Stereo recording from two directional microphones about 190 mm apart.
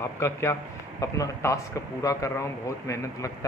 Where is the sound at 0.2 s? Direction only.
15° left (ahead or behind).